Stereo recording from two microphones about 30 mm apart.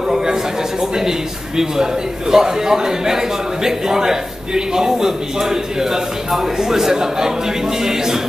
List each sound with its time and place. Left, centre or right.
2.3 s a man's voice: centre